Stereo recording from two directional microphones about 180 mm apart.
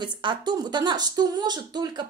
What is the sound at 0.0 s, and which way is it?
A woman's voice, 25° right (ahead or behind).